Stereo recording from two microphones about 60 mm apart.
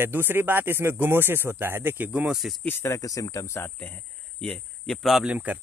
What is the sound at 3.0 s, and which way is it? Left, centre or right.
Speech, left.